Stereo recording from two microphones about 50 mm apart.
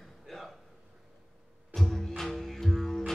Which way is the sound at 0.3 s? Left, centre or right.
Centre.